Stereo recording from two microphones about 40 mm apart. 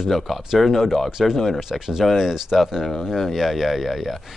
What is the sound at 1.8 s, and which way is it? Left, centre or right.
Speech, centre.